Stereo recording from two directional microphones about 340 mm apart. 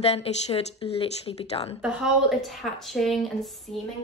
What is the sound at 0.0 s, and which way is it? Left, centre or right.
Speech, centre.